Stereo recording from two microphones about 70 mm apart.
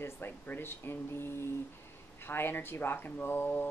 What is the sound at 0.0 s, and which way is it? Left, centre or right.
Speech, left.